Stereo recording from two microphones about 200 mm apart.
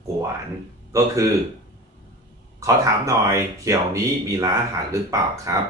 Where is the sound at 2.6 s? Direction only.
15° right (ahead or behind).